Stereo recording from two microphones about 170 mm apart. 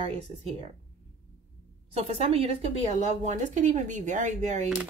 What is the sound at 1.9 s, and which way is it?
Speech, 35° right (ahead or behind).